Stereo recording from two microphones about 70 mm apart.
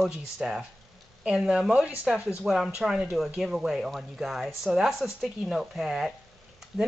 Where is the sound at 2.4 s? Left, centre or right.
Centre.